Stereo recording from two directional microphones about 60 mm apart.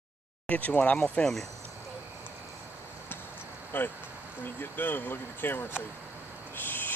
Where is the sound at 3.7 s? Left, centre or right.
Left.